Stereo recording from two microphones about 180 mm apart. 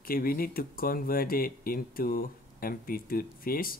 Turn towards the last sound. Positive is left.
turn(degrees=55)  # may be behind; listen again after turning